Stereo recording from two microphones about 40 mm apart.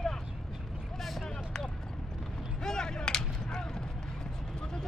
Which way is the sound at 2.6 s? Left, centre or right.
Centre.